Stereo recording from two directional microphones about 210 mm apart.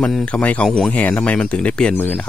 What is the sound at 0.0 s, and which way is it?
Speech, 5° left (ahead or behind).